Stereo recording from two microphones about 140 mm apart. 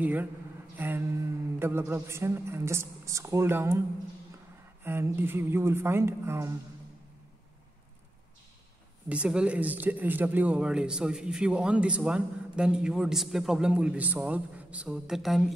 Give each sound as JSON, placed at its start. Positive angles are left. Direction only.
{"t": 0.0, "sound": "speech", "side_deg": -10}
{"t": 0.7, "sound": "a sound", "side_deg": -15}
{"t": 1.6, "sound": "a woman's voice", "side_deg": -15}
{"t": 4.8, "sound": "speech", "side_deg": -15}
{"t": 9.1, "sound": "speech", "side_deg": -10}